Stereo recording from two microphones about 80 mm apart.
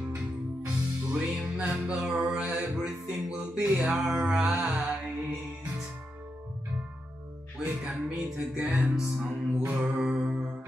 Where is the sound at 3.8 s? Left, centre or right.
Centre.